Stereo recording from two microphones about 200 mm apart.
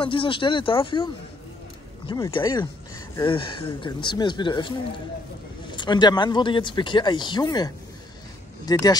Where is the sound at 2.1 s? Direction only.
20° left (ahead or behind).